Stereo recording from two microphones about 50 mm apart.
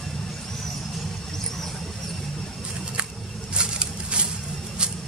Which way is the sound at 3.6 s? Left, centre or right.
Centre.